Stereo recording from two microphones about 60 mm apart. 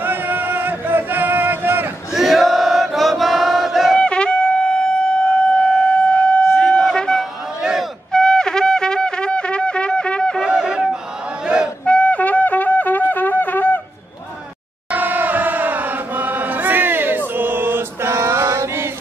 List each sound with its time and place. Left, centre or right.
0.0 s music: right
2.1 s chant: centre
3.9 s shofar: centre
4.9 s siren: centre
6.8 s wind instrument: centre
10.5 s a sound: centre
11.4 s battle cry: centre
11.8 s wind instrument: left
14.9 s chant: right